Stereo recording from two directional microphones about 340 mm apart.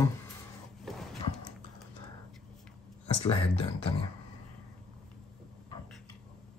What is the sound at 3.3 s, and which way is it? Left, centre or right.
Speech, centre.